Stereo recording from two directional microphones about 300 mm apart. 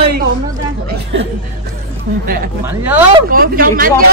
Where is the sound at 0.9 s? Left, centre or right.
Right.